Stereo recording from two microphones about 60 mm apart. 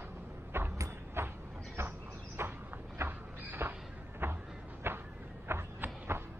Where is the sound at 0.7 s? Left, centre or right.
Right.